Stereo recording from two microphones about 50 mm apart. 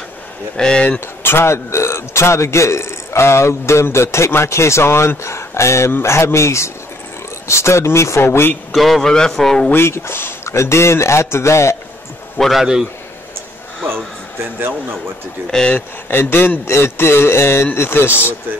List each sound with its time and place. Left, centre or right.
0.6 s a man's voice: centre
1.2 s a man's voice: left
8.7 s a man's voice: centre
9.0 s a man's voice: centre
9.8 s speech: left
10.5 s a man's voice: left
12.5 s a man's voice: centre
13.7 s a sound: centre
14.6 s speech: right
15.5 s a man's voice: centre
16.1 s a man's voice: left